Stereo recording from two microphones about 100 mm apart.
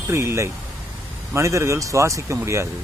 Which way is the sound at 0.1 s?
30° right (ahead or behind).